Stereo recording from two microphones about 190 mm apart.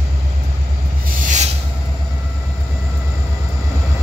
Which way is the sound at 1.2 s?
40° right (ahead or behind).